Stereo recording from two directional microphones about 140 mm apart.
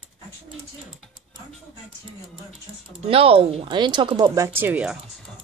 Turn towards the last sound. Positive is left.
turn(degrees=-10)  # may be behind; listen again after turning